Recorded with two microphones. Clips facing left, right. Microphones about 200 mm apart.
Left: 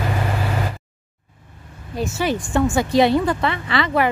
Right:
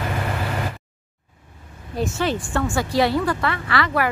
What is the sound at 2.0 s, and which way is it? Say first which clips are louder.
A woman's voice: left 1 dB; 10° left (ahead or behind).